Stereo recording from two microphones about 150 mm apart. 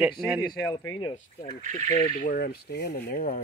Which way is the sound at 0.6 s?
15° left (ahead or behind).